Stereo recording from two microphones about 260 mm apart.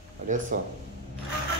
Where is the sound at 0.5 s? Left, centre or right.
Right.